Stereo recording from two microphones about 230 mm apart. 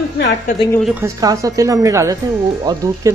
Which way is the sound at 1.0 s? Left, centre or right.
Centre.